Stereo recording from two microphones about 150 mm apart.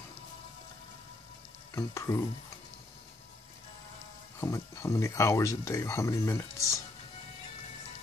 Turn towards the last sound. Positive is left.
turn(degrees=20)  # may be behind; listen again after turning